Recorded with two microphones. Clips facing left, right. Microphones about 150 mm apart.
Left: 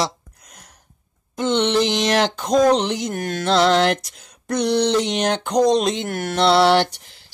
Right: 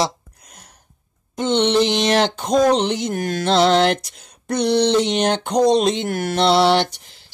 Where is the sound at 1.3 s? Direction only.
20° right (ahead or behind).